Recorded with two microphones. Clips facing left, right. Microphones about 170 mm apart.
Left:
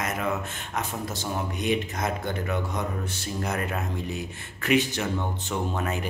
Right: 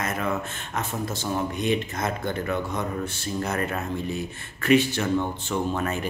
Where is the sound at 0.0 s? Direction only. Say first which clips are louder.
Right 1 dB; 15° left (ahead or behind).